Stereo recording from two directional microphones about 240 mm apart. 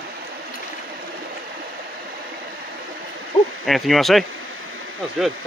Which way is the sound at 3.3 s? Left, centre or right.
Left.